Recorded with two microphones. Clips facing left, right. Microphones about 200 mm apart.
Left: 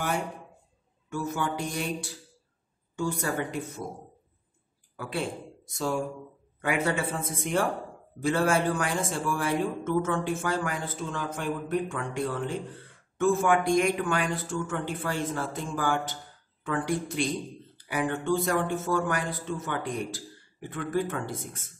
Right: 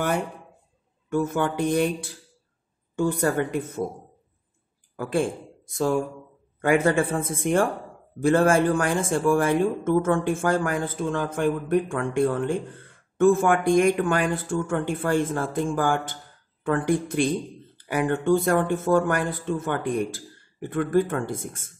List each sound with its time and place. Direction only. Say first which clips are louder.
1.1 s speech: right 7 dB; 55° right (ahead or behind)
4.9 s speech: right 8 dB; 45° right (ahead or behind)
6.6 s speech: right 7 dB; 50° right (ahead or behind)